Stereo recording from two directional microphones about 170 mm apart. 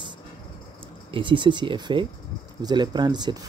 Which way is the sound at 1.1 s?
30° right (ahead or behind).